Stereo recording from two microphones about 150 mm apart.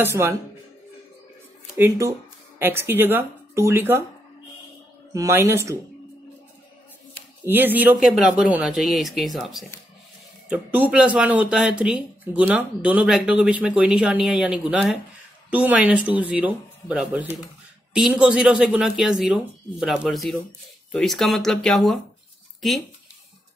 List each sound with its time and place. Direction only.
0.0 s speech: 15° right (ahead or behind)
1.8 s speech: 20° right (ahead or behind)
5.1 s speech: 20° right (ahead or behind)
7.4 s speech: 15° right (ahead or behind)
8.0 s speech: centre (ahead or behind)